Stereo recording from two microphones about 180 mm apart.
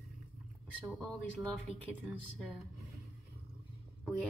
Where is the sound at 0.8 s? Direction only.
Centre (ahead or behind).